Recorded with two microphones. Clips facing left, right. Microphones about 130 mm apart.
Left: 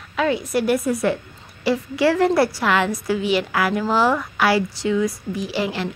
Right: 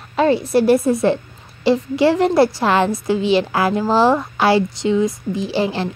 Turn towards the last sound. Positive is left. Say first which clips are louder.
# right 4 dB
turn(degrees=-30)  # may be behind; listen again after turning